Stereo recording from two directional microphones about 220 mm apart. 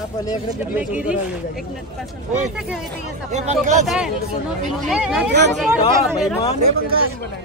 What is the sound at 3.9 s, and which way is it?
Speech, centre (ahead or behind).